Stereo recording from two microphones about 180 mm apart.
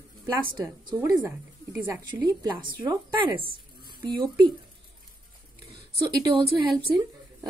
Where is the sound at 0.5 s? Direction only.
25° right (ahead or behind).